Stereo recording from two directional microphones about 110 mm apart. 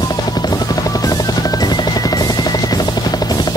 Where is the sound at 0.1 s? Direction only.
35° left (ahead or behind).